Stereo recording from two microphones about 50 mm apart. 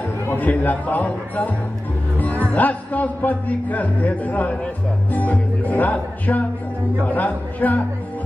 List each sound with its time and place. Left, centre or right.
0.4 s a man's voice: left